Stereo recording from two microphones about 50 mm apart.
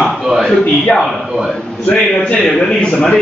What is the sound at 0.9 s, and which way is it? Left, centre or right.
Speech, centre.